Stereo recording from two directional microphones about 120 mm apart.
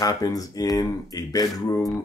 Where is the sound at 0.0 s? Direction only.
30° left (ahead or behind).